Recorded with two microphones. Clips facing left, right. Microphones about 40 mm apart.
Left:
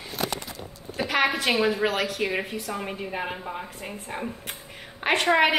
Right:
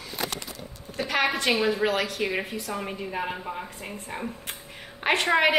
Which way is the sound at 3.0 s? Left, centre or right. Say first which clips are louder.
Even; centre.